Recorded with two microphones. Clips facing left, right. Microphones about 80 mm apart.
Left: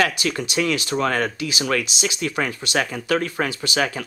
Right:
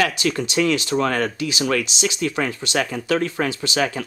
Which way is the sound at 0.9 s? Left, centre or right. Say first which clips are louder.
Right 1 dB; centre.